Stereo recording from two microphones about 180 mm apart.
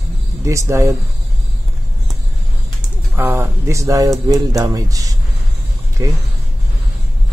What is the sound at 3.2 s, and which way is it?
A man's voice, 10° right (ahead or behind).